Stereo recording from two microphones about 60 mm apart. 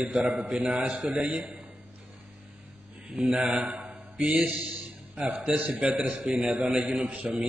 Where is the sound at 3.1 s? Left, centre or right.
Centre.